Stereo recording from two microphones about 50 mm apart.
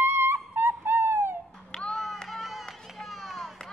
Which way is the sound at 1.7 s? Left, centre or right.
Centre.